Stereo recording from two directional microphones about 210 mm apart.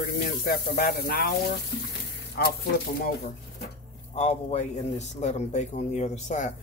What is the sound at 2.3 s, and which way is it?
Speech, 45° left (ahead or behind).